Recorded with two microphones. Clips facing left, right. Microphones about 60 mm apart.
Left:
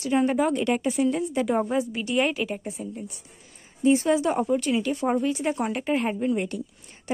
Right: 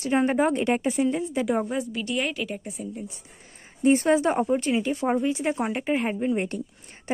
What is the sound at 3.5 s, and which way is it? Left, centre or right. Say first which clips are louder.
Speech: even; right.